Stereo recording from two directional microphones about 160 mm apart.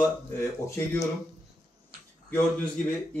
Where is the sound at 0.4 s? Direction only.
15° left (ahead or behind).